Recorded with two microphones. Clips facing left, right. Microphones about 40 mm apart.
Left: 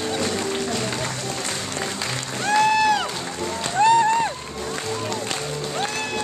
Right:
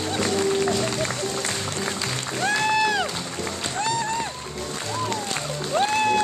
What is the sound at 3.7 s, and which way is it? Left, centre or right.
Music, left.